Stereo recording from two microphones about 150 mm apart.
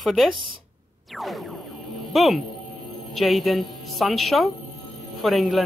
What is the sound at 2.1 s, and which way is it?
Speech, centre (ahead or behind).